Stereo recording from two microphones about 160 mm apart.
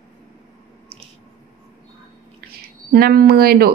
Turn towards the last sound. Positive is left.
turn(degrees=-75)  # may be behind; listen again after turning